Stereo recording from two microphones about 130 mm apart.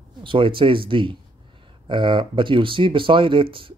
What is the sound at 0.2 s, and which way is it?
Speech, 40° right (ahead or behind).